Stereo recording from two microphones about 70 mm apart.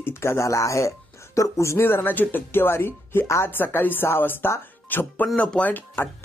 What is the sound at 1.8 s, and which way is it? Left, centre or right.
Speech, left.